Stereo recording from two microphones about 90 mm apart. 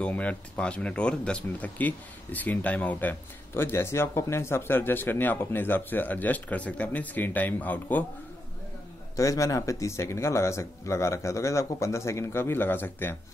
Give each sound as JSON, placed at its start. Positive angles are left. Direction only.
{"t": 0.0, "sound": "speech", "side_deg": 15}
{"t": 9.1, "sound": "speech", "side_deg": 35}